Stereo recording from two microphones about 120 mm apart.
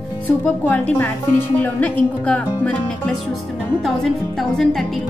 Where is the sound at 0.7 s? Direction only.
15° left (ahead or behind).